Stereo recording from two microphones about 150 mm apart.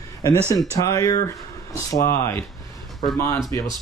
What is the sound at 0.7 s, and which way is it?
Speech, 20° left (ahead or behind).